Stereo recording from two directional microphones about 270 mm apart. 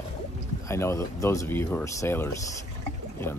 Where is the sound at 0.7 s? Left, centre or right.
Centre.